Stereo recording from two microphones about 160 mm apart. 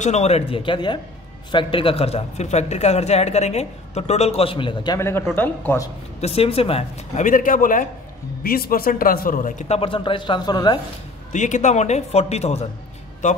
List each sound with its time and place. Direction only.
0.0 s speech: 45° left (ahead or behind)
4.9 s speech: 15° left (ahead or behind)
6.2 s speech: 35° left (ahead or behind); by 7.9 s 55° left (ahead or behind)
8.5 s a man's voice: 70° left (ahead or behind); by 9.8 s 50° left (ahead or behind)
9.8 s speech: 35° left (ahead or behind)
11.3 s speech: 50° left (ahead or behind)